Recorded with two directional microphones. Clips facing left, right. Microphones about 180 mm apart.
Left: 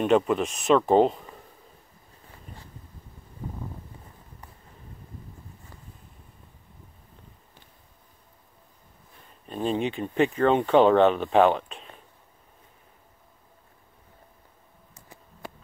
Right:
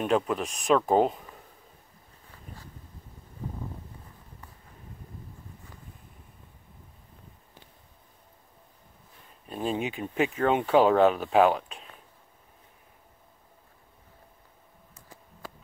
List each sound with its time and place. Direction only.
0.0 s speech: centre (ahead or behind)
9.5 s speech: 5° right (ahead or behind)